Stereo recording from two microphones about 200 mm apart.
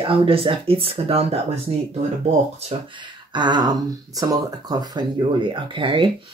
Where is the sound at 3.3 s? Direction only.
20° right (ahead or behind).